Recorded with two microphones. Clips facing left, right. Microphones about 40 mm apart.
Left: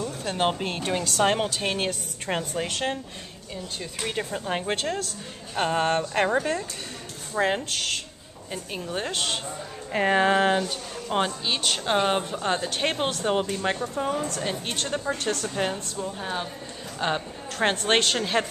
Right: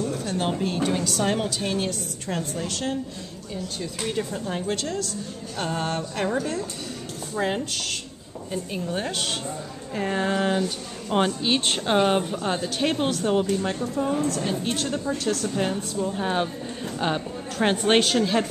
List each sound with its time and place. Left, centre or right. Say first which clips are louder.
0.2 s a woman's voice: even; left
3.8 s speech: right 2 dB; left
8.9 s speech: left 1 dB; centre
9.9 s a woman's voice: left 4 dB; left
10.6 s a woman's voice: right 2 dB; centre; by 13.8 s left
14.1 s speech: right 4 dB; centre
14.4 s speech: right 3 dB; left
16.0 s a woman's voice: right 7 dB; centre
17.0 s a woman's voice: even; centre
18.2 s speech: right 2 dB; centre